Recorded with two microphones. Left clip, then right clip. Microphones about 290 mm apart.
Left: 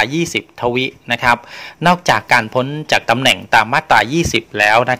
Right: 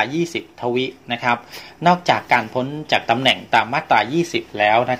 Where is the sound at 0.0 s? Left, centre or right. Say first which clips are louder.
Left 4 dB; left.